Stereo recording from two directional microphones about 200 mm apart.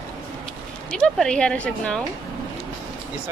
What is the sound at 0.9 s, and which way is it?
A woman's voice, centre (ahead or behind).